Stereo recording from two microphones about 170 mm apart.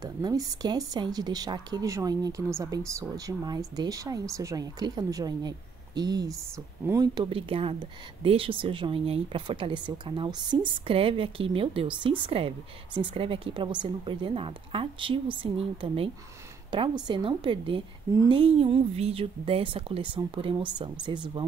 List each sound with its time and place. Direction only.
0.0 s a woman's voice: 20° right (ahead or behind)